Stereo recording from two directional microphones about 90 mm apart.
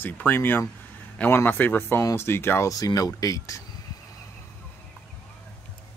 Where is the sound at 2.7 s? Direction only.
45° left (ahead or behind).